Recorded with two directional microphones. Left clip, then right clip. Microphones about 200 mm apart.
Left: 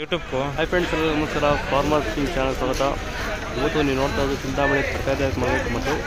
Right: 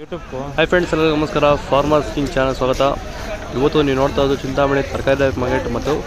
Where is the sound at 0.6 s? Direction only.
25° right (ahead or behind).